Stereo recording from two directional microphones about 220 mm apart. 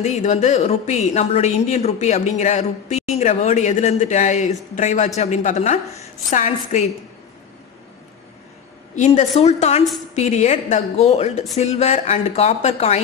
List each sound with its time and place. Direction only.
0.0 s a woman's voice: 30° left (ahead or behind)
8.9 s a woman's voice: 35° left (ahead or behind)